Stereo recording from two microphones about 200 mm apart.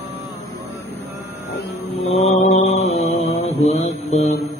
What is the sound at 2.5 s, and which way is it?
Mantra, 30° left (ahead or behind).